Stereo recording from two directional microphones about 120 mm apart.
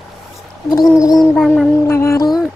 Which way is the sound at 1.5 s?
20° left (ahead or behind).